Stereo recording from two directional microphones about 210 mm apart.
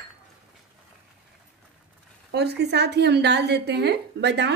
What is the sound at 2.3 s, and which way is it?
A woman's voice, 55° right (ahead or behind).